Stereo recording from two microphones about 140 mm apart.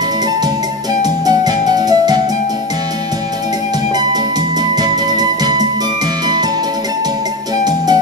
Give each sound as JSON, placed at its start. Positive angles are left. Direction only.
{"t": 1.2, "sound": "music", "side_deg": -30}
{"t": 3.9, "sound": "music", "side_deg": -30}
{"t": 7.6, "sound": "music", "side_deg": -30}